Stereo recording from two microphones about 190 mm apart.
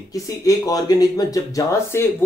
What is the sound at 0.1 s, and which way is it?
Speech, 20° left (ahead or behind).